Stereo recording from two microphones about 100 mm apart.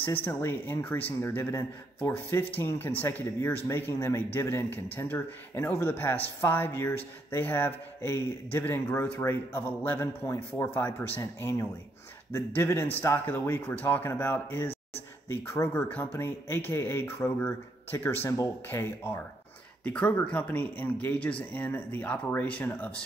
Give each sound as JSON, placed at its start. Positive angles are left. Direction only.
{"t": 0.0, "sound": "speech", "side_deg": 20}
{"t": 15.7, "sound": "speech", "side_deg": 15}